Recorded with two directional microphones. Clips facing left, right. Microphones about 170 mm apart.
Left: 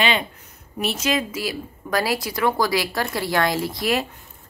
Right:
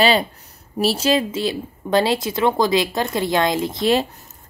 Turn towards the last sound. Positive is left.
turn(degrees=-25)  # may be behind; listen again after turning